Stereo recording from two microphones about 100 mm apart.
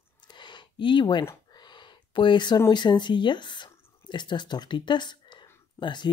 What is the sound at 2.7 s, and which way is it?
Speech, 50° left (ahead or behind).